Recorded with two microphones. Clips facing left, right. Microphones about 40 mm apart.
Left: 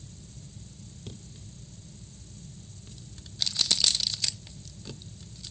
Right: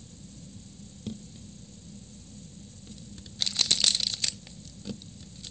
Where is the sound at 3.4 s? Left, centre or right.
Right.